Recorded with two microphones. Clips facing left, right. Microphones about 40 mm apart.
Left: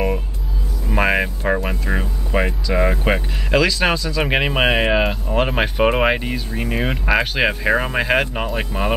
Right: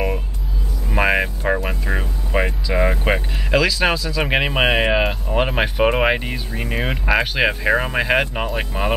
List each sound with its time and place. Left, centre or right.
0.8 s speech: centre